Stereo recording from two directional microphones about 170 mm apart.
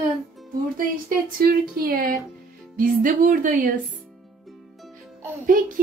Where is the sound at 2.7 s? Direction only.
50° right (ahead or behind).